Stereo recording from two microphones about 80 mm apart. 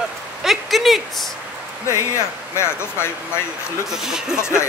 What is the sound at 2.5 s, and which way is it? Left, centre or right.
Speech, left.